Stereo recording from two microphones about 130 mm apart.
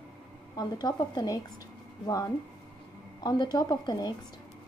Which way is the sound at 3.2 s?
30° left (ahead or behind).